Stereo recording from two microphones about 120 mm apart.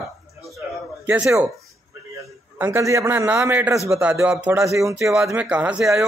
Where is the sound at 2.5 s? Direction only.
20° right (ahead or behind).